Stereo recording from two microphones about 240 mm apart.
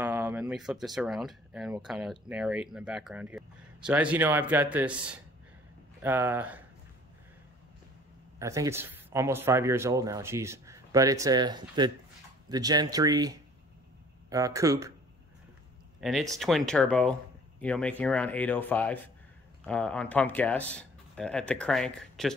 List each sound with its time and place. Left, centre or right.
0.0 s speech: centre
8.4 s speech: centre
16.0 s speech: centre